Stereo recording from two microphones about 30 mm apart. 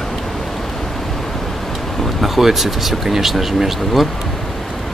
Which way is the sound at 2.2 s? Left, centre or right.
Centre.